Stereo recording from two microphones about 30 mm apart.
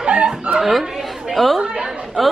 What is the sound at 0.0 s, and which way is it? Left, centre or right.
Snicker, right.